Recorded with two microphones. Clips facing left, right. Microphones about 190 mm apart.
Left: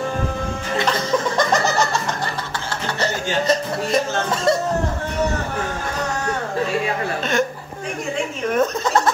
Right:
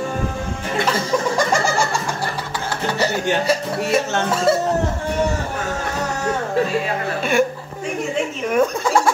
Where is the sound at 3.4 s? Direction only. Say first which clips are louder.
Even; 10° right (ahead or behind).